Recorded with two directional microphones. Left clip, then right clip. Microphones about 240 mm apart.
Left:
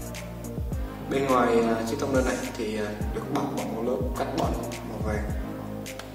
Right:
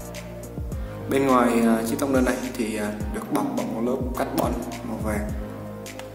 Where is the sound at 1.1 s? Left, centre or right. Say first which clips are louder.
Right 3 dB; right.